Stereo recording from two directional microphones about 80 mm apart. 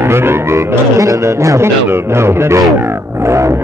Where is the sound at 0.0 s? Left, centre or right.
Right.